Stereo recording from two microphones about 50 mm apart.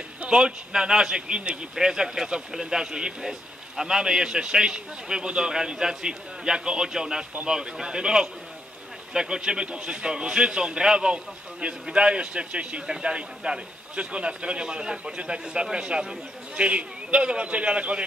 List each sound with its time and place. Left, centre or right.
0.2 s a man's voice: centre